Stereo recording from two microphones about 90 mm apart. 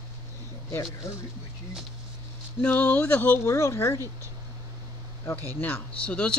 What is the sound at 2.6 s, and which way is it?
Speech, 20° left (ahead or behind).